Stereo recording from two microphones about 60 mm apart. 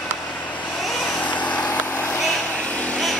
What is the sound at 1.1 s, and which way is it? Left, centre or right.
Vehicle, left.